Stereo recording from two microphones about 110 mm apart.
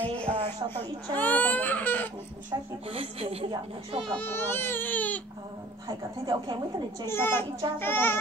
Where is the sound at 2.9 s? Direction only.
65° right (ahead or behind).